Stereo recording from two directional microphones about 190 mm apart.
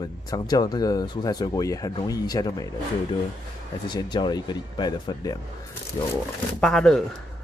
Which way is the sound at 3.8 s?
20° left (ahead or behind).